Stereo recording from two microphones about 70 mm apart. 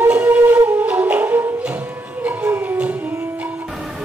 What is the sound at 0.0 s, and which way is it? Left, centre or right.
Flute, right.